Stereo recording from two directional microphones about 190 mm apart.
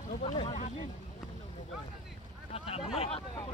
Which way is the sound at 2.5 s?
30° left (ahead or behind).